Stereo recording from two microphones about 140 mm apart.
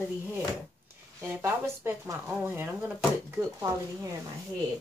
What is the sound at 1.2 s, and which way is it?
Speech, 15° right (ahead or behind).